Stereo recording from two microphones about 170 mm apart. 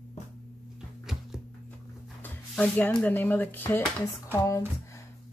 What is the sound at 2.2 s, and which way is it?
Speech, 10° left (ahead or behind).